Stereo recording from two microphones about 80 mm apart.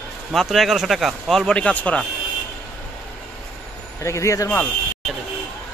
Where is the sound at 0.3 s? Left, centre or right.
Centre.